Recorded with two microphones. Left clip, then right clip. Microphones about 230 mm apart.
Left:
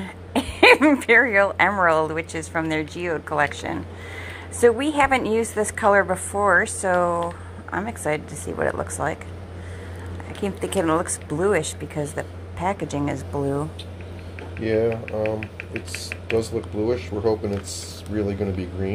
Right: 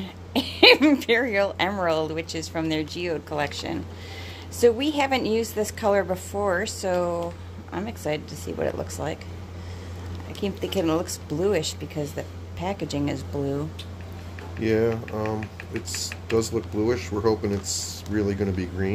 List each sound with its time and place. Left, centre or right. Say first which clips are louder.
0.0 s speech: left 2 dB; centre
10.4 s speech: left 2 dB; centre
14.6 s speech: left 1 dB; right
15.0 s speech: left 4 dB; right
16.0 s speech: left 1 dB; right